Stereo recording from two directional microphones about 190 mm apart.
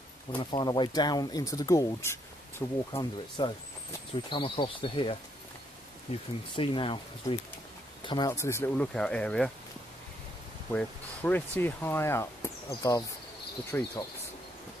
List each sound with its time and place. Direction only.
0.4 s speech: 25° left (ahead or behind); by 9.5 s 5° left (ahead or behind)
10.7 s speech: 10° left (ahead or behind)